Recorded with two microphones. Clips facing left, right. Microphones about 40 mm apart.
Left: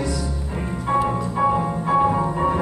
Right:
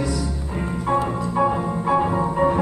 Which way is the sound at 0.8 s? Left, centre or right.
Centre.